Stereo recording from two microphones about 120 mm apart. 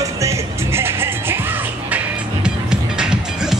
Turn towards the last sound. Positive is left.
turn(degrees=-5)  # may be behind; listen again after turning